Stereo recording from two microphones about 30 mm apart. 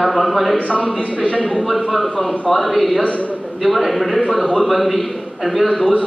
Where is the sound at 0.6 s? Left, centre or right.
Left.